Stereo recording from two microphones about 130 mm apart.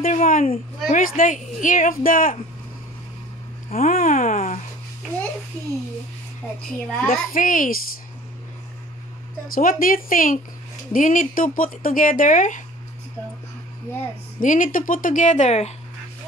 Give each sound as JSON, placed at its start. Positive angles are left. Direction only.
{"t": 0.0, "sound": "a sound", "side_deg": 90}
{"t": 0.8, "sound": "speech", "side_deg": 85}
{"t": 3.7, "sound": "a sound", "side_deg": 90}
{"t": 7.1, "sound": "speech", "side_deg": 90}
{"t": 9.5, "sound": "speech", "side_deg": 90}
{"t": 14.4, "sound": "speech", "side_deg": 90}